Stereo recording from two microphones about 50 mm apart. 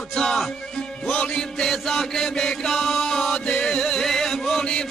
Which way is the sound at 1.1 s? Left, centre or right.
Left.